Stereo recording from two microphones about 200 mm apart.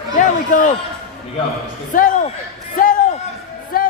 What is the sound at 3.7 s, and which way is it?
Music, 45° left (ahead or behind).